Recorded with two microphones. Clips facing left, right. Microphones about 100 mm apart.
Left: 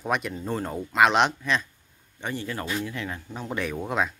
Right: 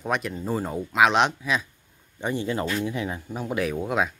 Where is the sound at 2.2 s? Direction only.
20° right (ahead or behind); by 4.1 s centre (ahead or behind).